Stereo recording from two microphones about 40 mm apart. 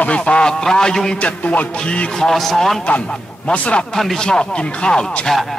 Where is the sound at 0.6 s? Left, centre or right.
Centre.